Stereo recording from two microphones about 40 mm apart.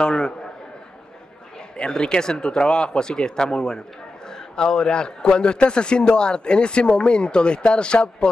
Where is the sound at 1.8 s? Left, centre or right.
Left.